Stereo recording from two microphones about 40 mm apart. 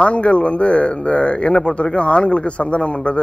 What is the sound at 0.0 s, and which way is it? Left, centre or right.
Speech, left.